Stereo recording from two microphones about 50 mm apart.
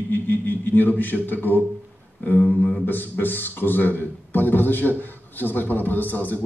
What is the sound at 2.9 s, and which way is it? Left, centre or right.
A man's voice, left.